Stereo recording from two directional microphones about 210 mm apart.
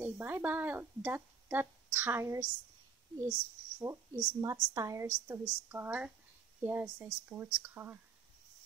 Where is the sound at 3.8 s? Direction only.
15° right (ahead or behind).